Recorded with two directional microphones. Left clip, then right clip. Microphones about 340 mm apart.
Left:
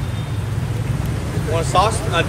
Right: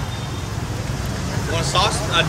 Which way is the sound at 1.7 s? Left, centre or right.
Centre.